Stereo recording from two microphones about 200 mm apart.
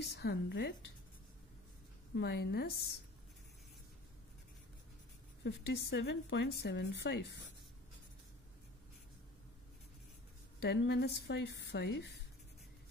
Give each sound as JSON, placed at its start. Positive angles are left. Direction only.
{"t": 0.1, "sound": "speech", "side_deg": 55}
{"t": 2.1, "sound": "a woman's voice", "side_deg": 55}
{"t": 5.4, "sound": "speech", "side_deg": 55}
{"t": 10.6, "sound": "speech", "side_deg": 55}